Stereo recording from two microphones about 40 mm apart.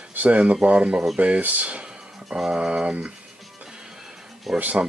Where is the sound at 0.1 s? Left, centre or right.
Right.